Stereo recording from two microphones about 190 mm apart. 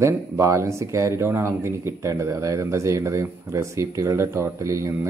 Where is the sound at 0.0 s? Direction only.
15° right (ahead or behind).